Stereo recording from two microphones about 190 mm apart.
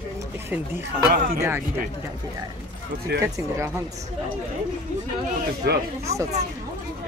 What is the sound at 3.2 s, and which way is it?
Speech, 15° right (ahead or behind).